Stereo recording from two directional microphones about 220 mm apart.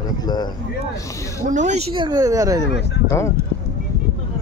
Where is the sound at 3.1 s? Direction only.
10° left (ahead or behind).